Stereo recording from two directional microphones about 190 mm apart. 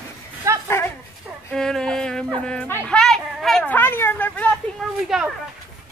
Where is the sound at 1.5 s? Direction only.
5° left (ahead or behind).